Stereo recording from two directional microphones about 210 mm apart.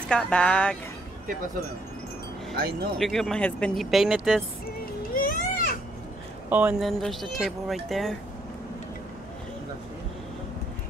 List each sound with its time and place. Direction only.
0.1 s speech: 5° left (ahead or behind)
2.5 s speech: 45° right (ahead or behind)
3.0 s speech: centre (ahead or behind)
4.6 s children playing: 40° left (ahead or behind)
6.5 s speech: 5° right (ahead or behind)